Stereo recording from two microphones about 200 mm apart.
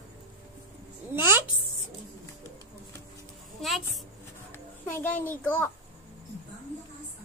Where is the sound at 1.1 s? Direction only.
10° right (ahead or behind).